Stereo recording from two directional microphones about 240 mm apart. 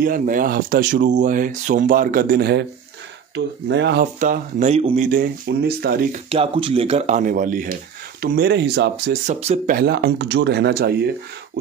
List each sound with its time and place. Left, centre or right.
0.0 s speech: right
4.0 s speech: right
6.2 s speech: right
9.8 s speech: right